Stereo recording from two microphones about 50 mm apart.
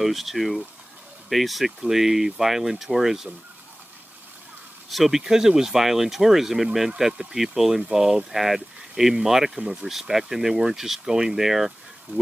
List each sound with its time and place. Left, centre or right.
0.0 s speech: centre
4.8 s speech: centre
12.1 s speech: right